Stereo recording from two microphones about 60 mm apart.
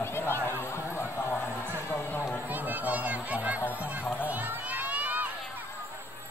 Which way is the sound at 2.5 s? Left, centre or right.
Right.